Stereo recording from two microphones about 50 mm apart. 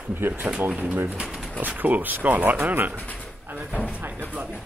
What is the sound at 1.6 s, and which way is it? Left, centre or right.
Speech, right.